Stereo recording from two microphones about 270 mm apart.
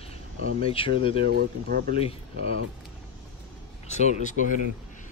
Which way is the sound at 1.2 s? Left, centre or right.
Right.